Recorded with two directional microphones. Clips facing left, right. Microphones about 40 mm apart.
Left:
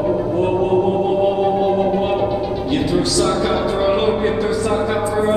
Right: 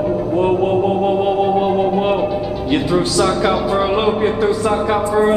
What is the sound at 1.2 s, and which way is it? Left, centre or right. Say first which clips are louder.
Speech: right 1 dB; right.